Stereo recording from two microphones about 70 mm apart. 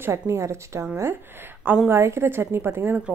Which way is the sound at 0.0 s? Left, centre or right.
Right.